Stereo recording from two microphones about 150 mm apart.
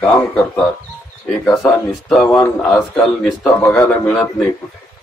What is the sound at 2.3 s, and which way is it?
A man's voice, 10° left (ahead or behind).